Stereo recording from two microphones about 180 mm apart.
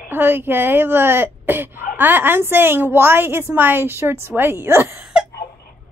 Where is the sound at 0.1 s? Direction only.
10° right (ahead or behind).